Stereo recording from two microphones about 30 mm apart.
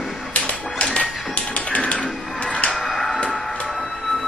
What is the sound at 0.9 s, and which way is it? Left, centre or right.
Music, left.